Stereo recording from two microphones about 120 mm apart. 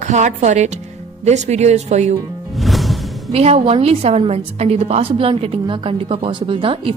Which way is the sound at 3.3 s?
60° right (ahead or behind).